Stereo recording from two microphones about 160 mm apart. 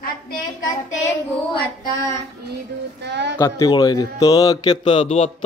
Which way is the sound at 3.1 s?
90° right.